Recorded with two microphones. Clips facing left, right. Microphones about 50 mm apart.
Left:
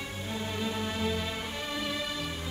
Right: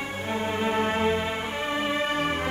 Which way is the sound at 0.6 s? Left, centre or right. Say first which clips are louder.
Right 9 dB; right.